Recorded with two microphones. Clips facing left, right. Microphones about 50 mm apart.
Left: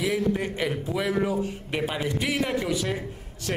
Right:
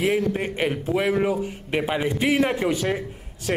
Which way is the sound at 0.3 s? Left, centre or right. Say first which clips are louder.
Right 2 dB; right.